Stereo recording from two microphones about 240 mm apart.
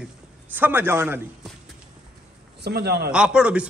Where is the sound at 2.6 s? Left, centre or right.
Right.